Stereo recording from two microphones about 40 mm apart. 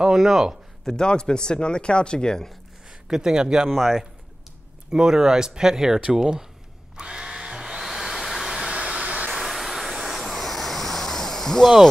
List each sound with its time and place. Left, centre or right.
0.1 s speech: centre
0.8 s speech: centre
2.9 s a man's voice: centre
3.7 s speech: centre
4.9 s speech: centre
7.0 s hair dryer: centre
8.5 s hair dryer: right
9.3 s vehicle: centre